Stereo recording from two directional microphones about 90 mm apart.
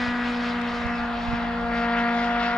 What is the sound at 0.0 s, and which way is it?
Vehicle, centre (ahead or behind).